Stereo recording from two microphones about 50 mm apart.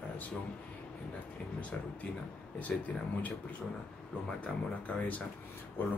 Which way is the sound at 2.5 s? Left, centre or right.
Left.